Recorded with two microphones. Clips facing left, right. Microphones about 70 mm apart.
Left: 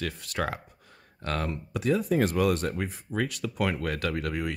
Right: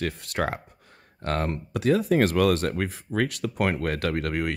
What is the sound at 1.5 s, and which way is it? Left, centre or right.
Speech, right.